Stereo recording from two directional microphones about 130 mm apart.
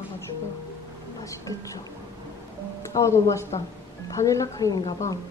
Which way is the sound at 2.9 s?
25° left (ahead or behind).